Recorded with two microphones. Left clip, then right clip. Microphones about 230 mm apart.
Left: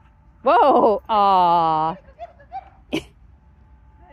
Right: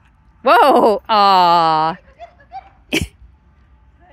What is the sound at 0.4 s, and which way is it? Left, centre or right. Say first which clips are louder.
Speech: right 4 dB; right.